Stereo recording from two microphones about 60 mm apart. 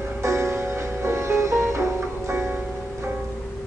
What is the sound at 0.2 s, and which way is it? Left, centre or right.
Music, right.